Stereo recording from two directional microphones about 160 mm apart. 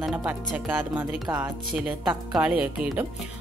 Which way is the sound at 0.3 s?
10° right (ahead or behind).